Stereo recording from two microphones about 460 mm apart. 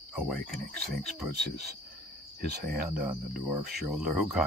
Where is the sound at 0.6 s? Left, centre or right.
Centre.